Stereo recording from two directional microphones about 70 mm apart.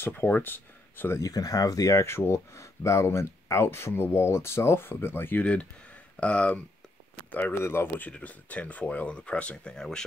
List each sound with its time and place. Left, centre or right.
0.0 s speech: left
1.2 s speech: left
5.4 s speech: centre
7.2 s a sound: left
7.5 s speech: left
8.1 s speech: left